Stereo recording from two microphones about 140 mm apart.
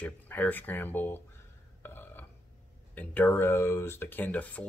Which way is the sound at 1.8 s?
15° left (ahead or behind).